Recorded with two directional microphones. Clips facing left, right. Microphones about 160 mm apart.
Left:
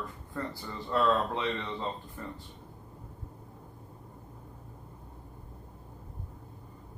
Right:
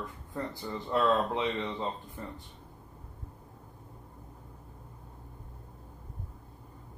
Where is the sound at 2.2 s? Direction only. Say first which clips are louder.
Even; 15° right (ahead or behind).